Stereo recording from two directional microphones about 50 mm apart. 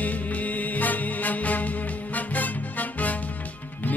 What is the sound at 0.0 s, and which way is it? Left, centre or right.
Music, left.